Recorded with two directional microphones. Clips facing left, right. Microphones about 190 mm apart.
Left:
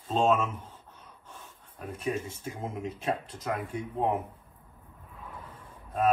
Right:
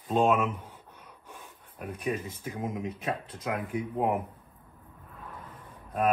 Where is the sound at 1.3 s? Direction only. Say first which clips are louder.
Right 2 dB; 10° right (ahead or behind).